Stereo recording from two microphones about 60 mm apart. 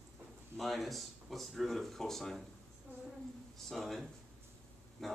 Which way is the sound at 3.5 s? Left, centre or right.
Centre.